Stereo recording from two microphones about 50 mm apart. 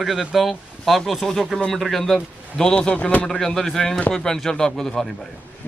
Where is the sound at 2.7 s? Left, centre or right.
Left.